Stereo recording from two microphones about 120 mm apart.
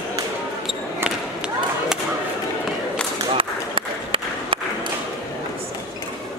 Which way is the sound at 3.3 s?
50° right (ahead or behind).